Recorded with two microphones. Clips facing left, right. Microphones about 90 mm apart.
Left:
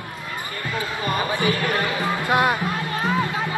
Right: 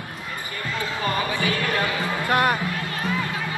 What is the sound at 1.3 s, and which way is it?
Music, 20° left (ahead or behind).